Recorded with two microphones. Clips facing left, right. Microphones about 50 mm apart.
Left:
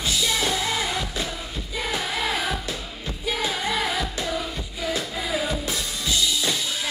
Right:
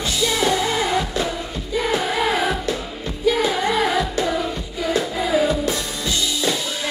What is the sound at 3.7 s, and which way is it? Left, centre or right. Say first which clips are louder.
Music: right 5 dB; centre.